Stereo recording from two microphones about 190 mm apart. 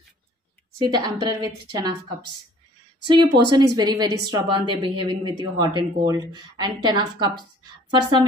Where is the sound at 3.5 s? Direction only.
20° right (ahead or behind).